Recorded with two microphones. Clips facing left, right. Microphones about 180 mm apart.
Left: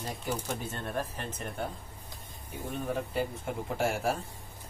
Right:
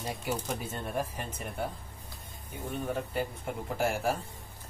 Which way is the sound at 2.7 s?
Centre (ahead or behind).